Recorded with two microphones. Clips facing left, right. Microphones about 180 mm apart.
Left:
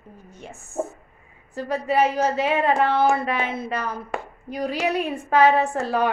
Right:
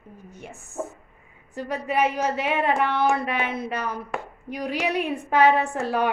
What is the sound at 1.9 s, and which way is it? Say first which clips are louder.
Speech: left 3 dB; 35° left (ahead or behind).